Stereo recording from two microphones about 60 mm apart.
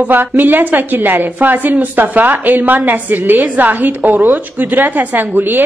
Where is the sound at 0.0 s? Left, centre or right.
Right.